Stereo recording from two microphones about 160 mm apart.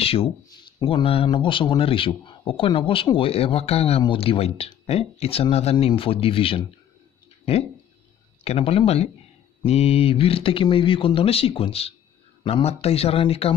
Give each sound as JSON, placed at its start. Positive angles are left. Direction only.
{"t": 0.0, "sound": "speech", "side_deg": 35}
{"t": 8.5, "sound": "speech", "side_deg": 40}